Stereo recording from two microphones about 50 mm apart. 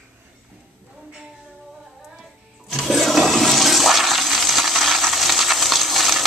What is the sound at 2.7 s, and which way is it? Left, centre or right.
Toilet flush, centre.